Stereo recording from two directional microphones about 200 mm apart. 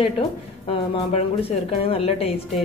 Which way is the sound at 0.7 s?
30° left (ahead or behind).